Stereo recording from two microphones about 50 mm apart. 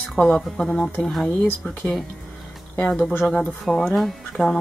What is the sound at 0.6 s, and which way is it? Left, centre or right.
Speech, centre.